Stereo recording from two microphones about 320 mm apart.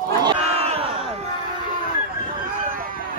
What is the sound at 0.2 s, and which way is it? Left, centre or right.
Crowd, centre.